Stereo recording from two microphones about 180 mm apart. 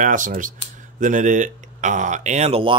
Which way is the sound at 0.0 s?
45° right (ahead or behind).